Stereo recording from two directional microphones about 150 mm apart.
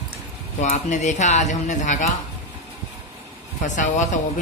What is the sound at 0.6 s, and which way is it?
Speech, 55° left (ahead or behind).